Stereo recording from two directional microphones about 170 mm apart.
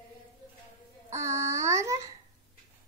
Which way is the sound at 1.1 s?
15° right (ahead or behind).